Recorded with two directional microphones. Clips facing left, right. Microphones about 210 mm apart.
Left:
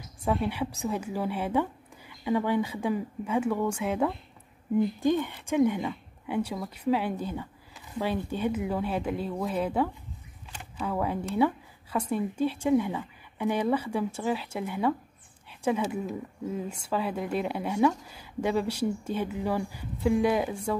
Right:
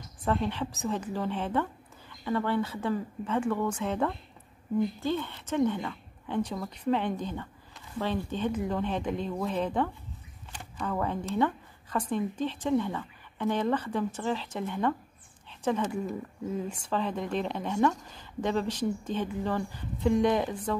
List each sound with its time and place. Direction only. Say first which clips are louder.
0.2 s speech: left 1 dB; 10° left (ahead or behind)